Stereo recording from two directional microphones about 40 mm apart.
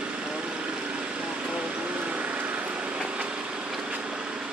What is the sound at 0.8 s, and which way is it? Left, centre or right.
Vehicle, right.